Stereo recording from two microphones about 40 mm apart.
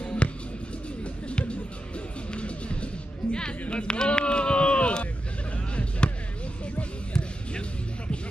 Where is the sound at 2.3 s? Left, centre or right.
Left.